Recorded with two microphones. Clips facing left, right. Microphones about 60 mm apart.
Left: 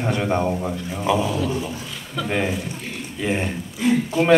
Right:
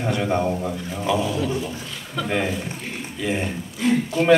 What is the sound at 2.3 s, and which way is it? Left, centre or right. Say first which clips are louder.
Speech: left 1 dB; centre.